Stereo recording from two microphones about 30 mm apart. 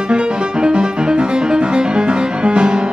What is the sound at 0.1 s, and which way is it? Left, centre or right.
Music, right.